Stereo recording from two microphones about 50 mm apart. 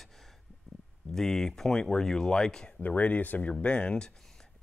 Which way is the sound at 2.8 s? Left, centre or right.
Left.